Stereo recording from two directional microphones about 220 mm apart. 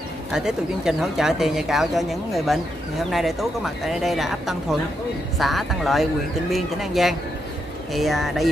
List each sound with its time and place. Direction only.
0.3 s speech: centre (ahead or behind)